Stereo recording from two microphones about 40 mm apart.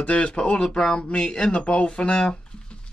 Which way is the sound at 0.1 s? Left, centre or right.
Left.